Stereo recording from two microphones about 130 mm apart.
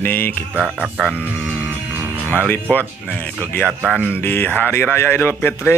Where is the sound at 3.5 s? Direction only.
10° left (ahead or behind).